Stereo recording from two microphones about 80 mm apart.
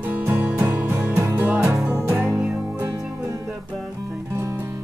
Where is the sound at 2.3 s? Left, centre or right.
Centre.